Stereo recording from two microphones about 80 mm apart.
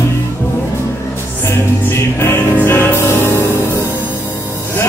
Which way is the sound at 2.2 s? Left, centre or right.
Left.